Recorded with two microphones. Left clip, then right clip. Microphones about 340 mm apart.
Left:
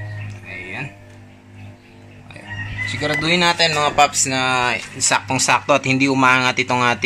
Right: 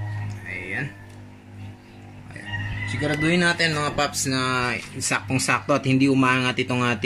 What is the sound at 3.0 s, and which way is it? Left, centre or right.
Speech, left.